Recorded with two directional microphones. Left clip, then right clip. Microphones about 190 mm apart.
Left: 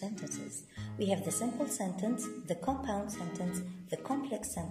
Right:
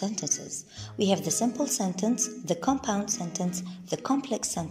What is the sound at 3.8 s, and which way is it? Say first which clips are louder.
Speech: right 8 dB; 10° right (ahead or behind).